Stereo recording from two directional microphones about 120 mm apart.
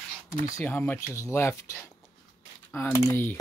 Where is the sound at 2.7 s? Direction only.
20° left (ahead or behind).